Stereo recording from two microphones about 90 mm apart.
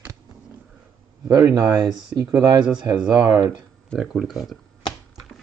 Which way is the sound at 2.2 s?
35° right (ahead or behind).